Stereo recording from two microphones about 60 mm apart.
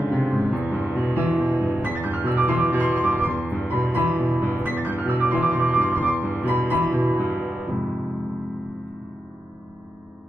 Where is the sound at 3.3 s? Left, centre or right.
Left.